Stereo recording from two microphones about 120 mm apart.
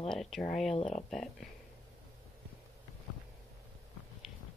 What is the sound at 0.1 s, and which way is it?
Speech, 5° left (ahead or behind).